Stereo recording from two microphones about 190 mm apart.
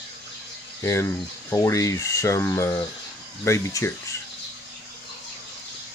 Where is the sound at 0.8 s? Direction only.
15° left (ahead or behind).